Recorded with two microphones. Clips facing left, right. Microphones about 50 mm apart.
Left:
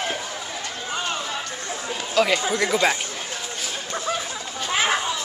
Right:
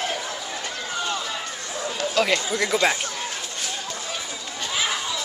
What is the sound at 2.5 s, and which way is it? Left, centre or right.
Speech, centre.